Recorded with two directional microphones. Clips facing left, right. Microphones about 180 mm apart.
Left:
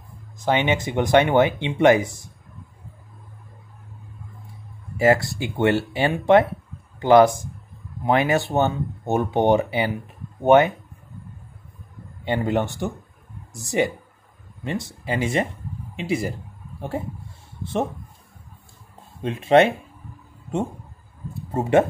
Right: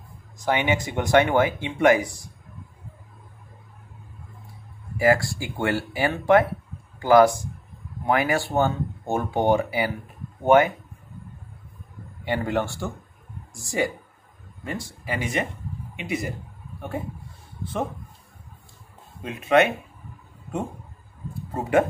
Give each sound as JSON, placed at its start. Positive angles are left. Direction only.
{"t": 0.5, "sound": "speech", "side_deg": 20}
{"t": 4.9, "sound": "speech", "side_deg": 25}
{"t": 12.3, "sound": "speech", "side_deg": 20}
{"t": 19.2, "sound": "speech", "side_deg": 30}
{"t": 21.3, "sound": "speech", "side_deg": 25}